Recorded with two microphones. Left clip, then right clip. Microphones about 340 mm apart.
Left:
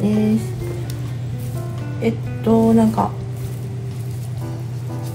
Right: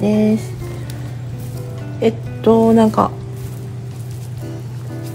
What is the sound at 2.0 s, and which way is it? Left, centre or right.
Speech, right.